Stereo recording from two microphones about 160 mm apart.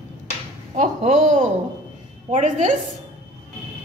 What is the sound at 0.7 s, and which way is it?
Speech, 50° right (ahead or behind).